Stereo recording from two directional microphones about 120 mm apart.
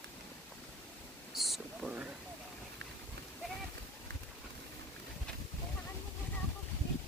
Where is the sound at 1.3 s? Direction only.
Centre (ahead or behind).